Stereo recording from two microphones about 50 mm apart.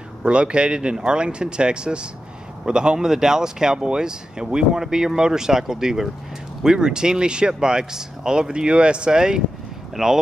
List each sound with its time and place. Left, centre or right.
0.2 s speech: right